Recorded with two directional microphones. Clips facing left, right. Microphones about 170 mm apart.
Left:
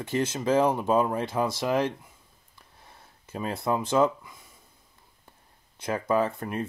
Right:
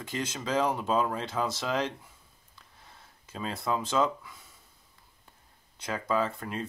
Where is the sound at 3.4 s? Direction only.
15° left (ahead or behind).